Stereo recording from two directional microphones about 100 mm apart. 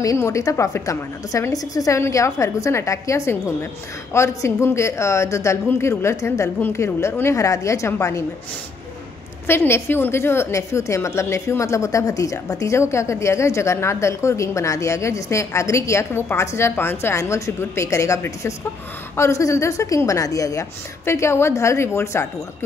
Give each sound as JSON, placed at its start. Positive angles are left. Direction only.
{"t": 0.0, "sound": "a woman's voice", "side_deg": 30}
{"t": 9.5, "sound": "a woman's voice", "side_deg": 25}